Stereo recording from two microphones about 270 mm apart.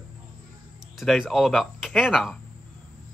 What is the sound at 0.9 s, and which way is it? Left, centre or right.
A woman's voice, centre.